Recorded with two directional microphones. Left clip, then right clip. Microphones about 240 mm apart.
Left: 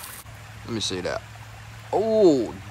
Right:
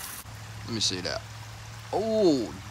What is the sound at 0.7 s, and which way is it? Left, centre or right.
Speech, centre.